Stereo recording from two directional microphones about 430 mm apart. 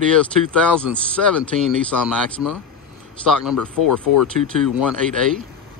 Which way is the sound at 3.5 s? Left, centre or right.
Left.